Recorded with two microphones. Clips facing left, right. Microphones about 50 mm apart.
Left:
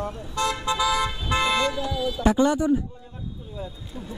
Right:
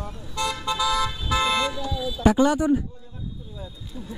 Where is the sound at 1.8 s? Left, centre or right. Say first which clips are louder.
Left 2 dB; left.